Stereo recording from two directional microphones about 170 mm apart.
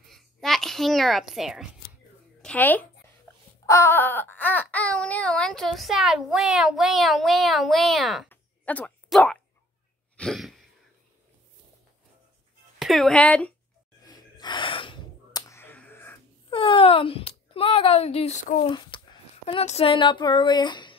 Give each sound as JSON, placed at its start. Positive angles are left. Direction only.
{"t": 0.1, "sound": "a sound", "side_deg": 0}
{"t": 2.4, "sound": "speech", "side_deg": 10}
{"t": 3.6, "sound": "wail", "side_deg": 15}
{"t": 8.3, "sound": "a sound", "side_deg": 10}
{"t": 12.7, "sound": "speech", "side_deg": 0}
{"t": 14.0, "sound": "gasp", "side_deg": 25}
{"t": 16.4, "sound": "speech", "side_deg": 30}
{"t": 18.7, "sound": "speech", "side_deg": 25}
{"t": 19.4, "sound": "speech", "side_deg": 40}